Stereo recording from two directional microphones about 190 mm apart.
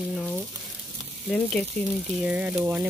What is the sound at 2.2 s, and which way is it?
Speech, 10° right (ahead or behind).